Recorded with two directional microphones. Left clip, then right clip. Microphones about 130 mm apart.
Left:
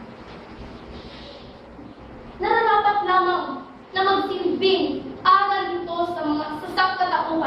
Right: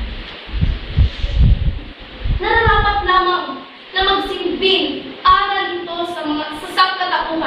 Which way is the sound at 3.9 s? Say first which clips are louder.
Right 4 dB; 45° right (ahead or behind).